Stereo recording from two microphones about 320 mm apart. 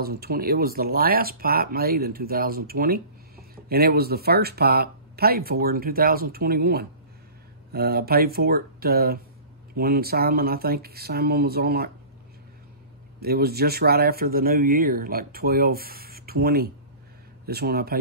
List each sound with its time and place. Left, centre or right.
0.0 s speech: right
13.2 s speech: right